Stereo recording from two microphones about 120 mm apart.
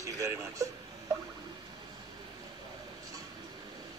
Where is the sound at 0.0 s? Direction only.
25° right (ahead or behind).